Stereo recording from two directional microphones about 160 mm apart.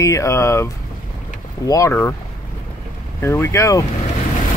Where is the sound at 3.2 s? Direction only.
15° left (ahead or behind).